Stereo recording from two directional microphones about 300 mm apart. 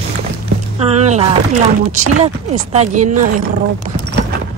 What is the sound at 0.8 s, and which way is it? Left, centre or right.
Speech, right.